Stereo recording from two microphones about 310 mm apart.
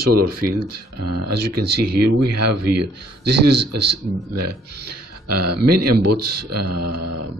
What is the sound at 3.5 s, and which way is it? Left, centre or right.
Speech, right.